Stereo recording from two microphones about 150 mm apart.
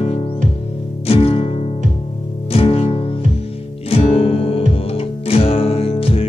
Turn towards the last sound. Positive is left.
turn(degrees=40)  # may be behind; listen again after turning